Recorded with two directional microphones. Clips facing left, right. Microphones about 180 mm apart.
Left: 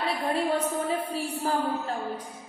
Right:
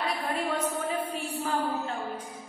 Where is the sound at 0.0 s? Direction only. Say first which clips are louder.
Left 3 dB; 30° left (ahead or behind).